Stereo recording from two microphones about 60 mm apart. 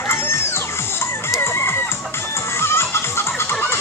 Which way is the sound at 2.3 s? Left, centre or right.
Left.